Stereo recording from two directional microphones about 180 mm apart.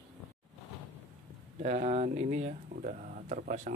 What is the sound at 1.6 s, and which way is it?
Speech, 40° right (ahead or behind).